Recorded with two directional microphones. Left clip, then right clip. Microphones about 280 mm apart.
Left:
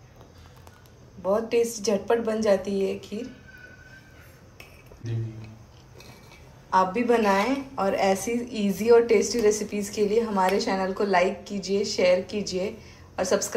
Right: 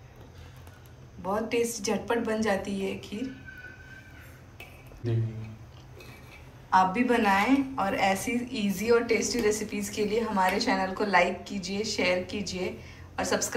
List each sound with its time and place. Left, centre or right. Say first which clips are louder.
1.2 s a woman's voice: left 5 dB; left
6.7 s a woman's voice: left 2 dB; centre